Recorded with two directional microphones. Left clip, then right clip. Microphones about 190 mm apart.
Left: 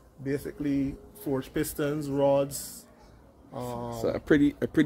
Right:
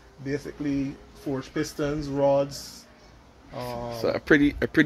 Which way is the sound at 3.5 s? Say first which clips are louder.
Right 2 dB; 10° left (ahead or behind).